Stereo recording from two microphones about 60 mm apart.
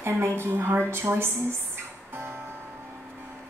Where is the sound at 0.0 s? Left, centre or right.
Right.